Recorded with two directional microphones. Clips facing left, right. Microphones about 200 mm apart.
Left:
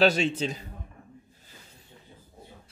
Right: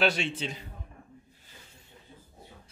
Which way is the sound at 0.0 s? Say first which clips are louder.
Left 5 dB; 40° left (ahead or behind).